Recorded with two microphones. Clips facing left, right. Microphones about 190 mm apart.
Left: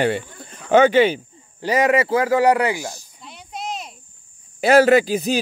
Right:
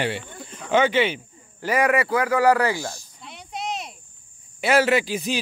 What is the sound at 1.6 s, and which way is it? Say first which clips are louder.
Speech: left 3 dB; 20° left (ahead or behind).